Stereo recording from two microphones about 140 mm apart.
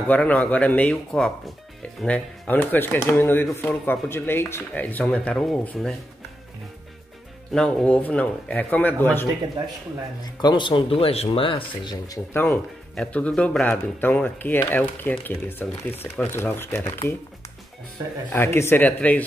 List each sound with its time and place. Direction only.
0.1 s speech: 10° left (ahead or behind)
7.5 s speech: 5° left (ahead or behind)
10.2 s speech: 30° left (ahead or behind)
12.3 s speech: 20° left (ahead or behind)
12.9 s speech: 5° left (ahead or behind)
18.3 s speech: 15° left (ahead or behind)